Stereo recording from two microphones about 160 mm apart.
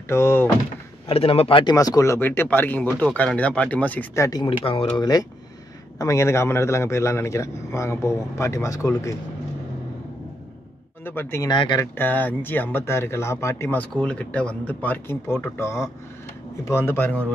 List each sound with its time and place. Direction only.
0.1 s speech: 15° left (ahead or behind)
1.0 s a man's voice: 35° left (ahead or behind); by 9.1 s 20° left (ahead or behind)
11.1 s speech: 15° left (ahead or behind)
11.4 s a man's voice: 30° left (ahead or behind)
11.8 s speech: 10° left (ahead or behind)